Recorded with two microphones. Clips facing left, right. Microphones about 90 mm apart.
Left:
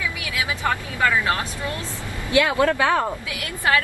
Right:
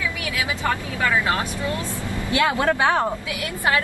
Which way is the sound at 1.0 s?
20° right (ahead or behind).